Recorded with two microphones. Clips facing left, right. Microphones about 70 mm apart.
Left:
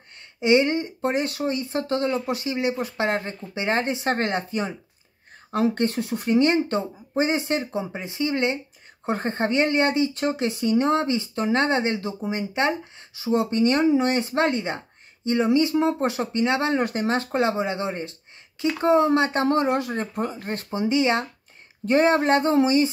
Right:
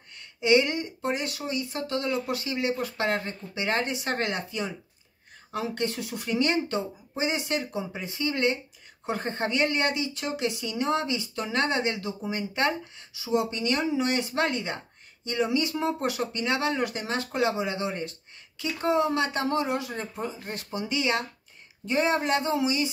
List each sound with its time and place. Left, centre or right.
0.2 s speech: left
13.1 s speech: left
20.7 s speech: left
21.8 s speech: left